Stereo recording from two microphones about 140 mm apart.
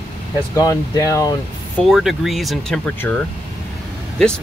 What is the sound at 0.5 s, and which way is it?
Speech, 25° left (ahead or behind).